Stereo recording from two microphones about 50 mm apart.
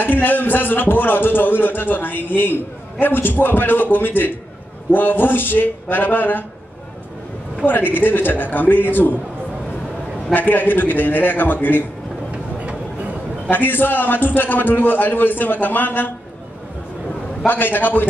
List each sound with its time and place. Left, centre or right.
0.0 s a man's voice: left
7.6 s a man's voice: left
10.3 s a man's voice: left
13.5 s a man's voice: left
17.5 s a man's voice: left